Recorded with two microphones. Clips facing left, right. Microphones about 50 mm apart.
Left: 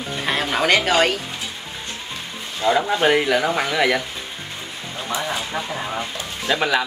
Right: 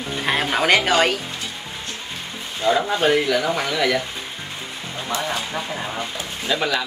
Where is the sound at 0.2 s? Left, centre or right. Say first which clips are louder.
Right 1 dB; centre.